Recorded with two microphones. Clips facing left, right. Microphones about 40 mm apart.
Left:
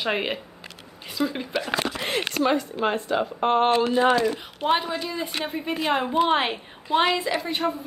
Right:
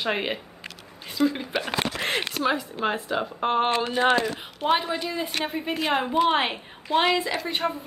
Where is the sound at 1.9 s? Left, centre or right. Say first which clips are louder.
Right 1 dB; right.